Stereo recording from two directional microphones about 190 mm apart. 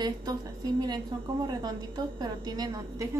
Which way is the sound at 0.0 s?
20° right (ahead or behind).